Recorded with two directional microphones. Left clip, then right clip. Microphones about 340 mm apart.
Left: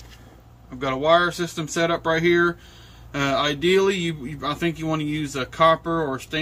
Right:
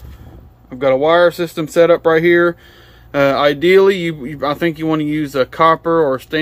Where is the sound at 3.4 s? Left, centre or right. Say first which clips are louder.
Right 8 dB; centre.